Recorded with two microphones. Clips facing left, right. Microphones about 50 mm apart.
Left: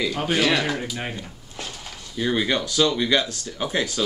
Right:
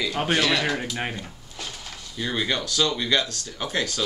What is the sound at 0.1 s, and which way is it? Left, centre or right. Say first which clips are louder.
Speech: even; centre.